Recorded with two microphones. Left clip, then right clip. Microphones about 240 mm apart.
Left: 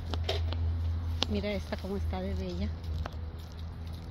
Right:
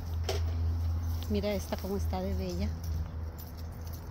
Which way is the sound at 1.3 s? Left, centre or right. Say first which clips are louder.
Right 2 dB; centre.